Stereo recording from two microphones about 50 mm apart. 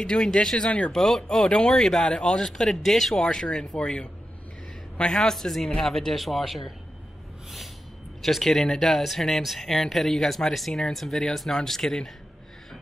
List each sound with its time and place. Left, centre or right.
0.0 s speech: centre
0.9 s speech: centre
5.1 s speech: centre
8.2 s speech: centre
10.7 s speech: centre